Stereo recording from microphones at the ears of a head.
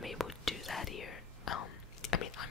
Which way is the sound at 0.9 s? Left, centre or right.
Left.